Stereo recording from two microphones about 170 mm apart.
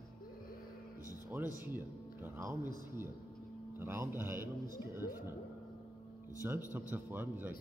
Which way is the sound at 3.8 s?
15° right (ahead or behind).